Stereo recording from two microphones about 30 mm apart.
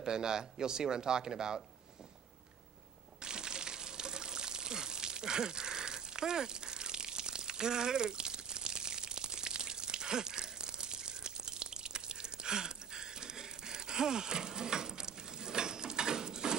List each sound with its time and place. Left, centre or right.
0.0 s a man's voice: right
3.2 s water: right